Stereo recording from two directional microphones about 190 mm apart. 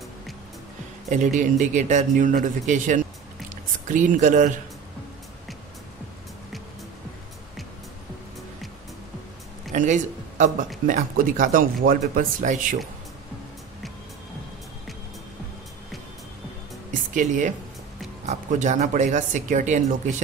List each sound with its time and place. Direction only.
1.0 s speech: 40° right (ahead or behind)
9.7 s speech: 40° right (ahead or behind)
17.1 s speech: 40° right (ahead or behind)